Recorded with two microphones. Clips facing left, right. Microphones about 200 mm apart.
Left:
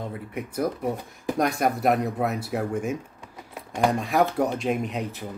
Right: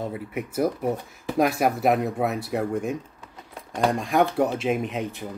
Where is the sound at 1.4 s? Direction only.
Centre (ahead or behind).